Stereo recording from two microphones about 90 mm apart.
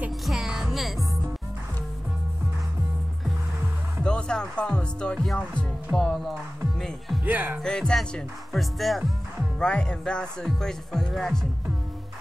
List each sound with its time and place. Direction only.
0.2 s music: 5° right (ahead or behind)
4.0 s speech: 10° left (ahead or behind)
7.2 s speech: 20° right (ahead or behind)
7.6 s speech: 10° left (ahead or behind)